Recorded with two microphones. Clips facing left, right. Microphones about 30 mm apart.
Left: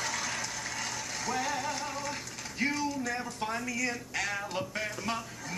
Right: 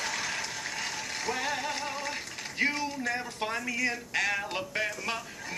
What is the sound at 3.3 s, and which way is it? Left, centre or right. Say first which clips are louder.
Speech: right 2 dB; right.